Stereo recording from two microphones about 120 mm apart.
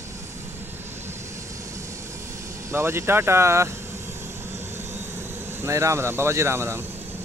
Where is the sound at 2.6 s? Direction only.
20° right (ahead or behind).